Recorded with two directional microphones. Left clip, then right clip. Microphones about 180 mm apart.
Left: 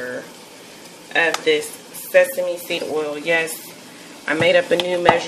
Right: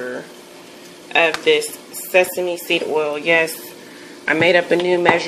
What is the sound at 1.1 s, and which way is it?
A woman's voice, 40° right (ahead or behind).